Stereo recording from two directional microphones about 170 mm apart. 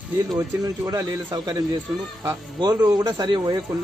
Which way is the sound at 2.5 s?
25° right (ahead or behind).